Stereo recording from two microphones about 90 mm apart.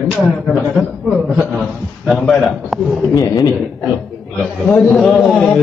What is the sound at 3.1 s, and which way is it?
Speech, 35° left (ahead or behind).